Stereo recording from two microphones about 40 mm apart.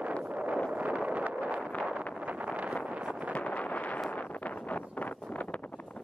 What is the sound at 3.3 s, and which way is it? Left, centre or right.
Wind noise, left.